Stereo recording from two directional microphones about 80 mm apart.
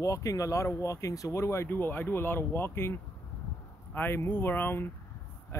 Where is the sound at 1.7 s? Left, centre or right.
Left.